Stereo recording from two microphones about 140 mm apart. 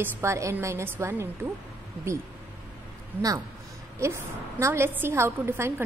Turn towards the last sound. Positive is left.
turn(degrees=-20)  # may be behind; listen again after turning